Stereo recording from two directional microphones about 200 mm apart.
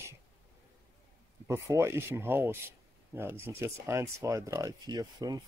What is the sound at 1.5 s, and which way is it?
Speech, 15° right (ahead or behind).